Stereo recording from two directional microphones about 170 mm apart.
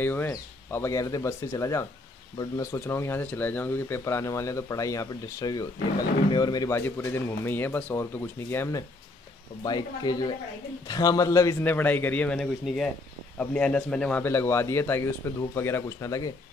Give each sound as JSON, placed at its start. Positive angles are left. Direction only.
{"t": 0.0, "sound": "speech", "side_deg": 15}
{"t": 9.6, "sound": "speech", "side_deg": 25}